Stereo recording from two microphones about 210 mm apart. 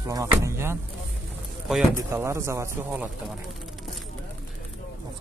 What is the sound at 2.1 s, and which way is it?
Speech, 15° right (ahead or behind).